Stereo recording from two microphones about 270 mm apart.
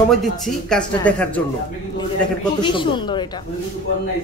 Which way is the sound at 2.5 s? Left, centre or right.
Centre.